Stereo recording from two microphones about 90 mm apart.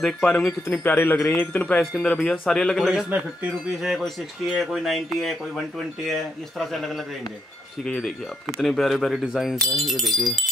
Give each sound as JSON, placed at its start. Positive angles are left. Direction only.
{"t": 0.0, "sound": "speech", "side_deg": 5}
{"t": 0.8, "sound": "speech", "side_deg": 20}
{"t": 7.8, "sound": "speech", "side_deg": 10}